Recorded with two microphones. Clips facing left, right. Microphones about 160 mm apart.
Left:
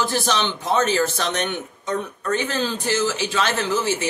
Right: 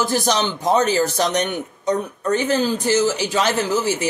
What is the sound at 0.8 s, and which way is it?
Speech, 15° right (ahead or behind).